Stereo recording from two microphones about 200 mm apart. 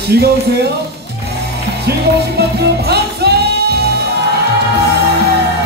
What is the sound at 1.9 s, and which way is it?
Music, 55° right (ahead or behind).